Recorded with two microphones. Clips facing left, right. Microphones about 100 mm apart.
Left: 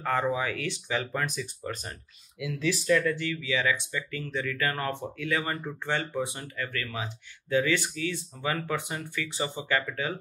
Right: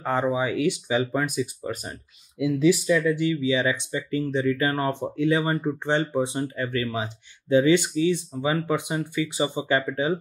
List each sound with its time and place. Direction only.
0.0 s speech: 20° right (ahead or behind)